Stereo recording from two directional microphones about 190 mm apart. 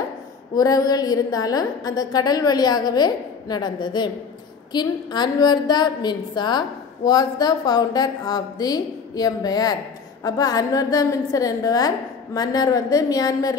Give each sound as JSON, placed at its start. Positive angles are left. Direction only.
{"t": 0.6, "sound": "a woman's voice", "side_deg": 20}